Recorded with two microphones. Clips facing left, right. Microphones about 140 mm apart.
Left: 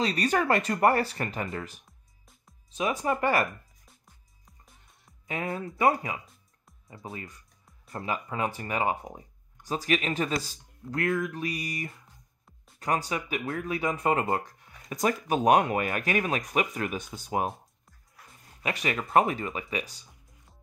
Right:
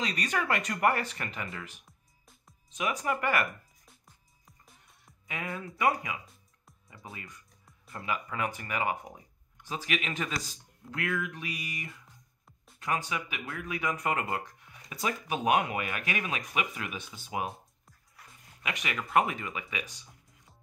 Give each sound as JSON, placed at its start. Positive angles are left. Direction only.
{"t": 0.0, "sound": "speech", "side_deg": 35}
{"t": 1.9, "sound": "music", "side_deg": 0}
{"t": 2.7, "sound": "speech", "side_deg": 30}
{"t": 5.3, "sound": "speech", "side_deg": 35}
{"t": 18.6, "sound": "speech", "side_deg": 35}